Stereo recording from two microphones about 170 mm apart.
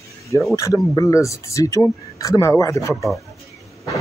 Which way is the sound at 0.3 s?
20° left (ahead or behind).